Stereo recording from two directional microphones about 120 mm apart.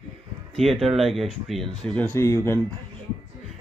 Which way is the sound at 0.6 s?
Centre (ahead or behind).